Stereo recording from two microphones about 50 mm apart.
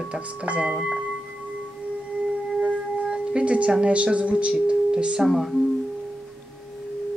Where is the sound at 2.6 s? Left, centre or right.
Right.